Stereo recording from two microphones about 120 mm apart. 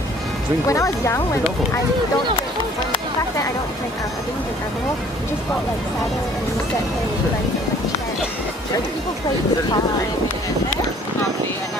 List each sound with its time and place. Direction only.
0.7 s speech: 25° left (ahead or behind)